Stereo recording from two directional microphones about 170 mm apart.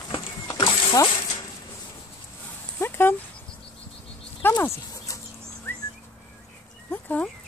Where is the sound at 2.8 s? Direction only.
15° left (ahead or behind).